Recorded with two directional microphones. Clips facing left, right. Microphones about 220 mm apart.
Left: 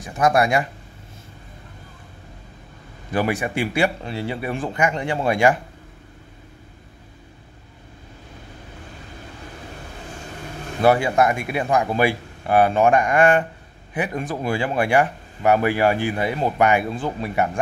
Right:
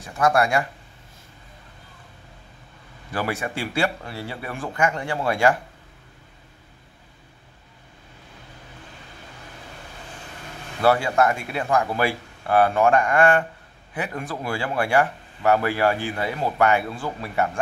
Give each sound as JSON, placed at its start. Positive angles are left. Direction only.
{"t": 0.0, "sound": "speech", "side_deg": 20}
{"t": 3.1, "sound": "speech", "side_deg": 15}
{"t": 10.8, "sound": "speech", "side_deg": 15}